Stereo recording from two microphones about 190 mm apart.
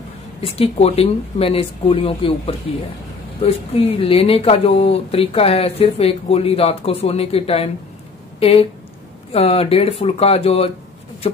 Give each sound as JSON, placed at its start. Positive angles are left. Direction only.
{"t": 0.4, "sound": "speech", "side_deg": 30}